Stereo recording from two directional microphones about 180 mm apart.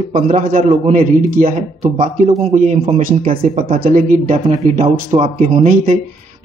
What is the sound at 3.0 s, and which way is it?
Speech, 50° right (ahead or behind).